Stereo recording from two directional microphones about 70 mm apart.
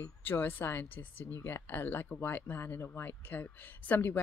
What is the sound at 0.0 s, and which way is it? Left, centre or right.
A woman's voice, left.